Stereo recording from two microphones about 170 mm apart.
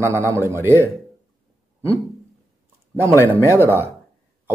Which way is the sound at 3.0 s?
15° right (ahead or behind).